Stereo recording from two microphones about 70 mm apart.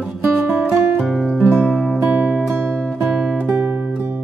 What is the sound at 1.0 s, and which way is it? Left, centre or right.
Music, centre.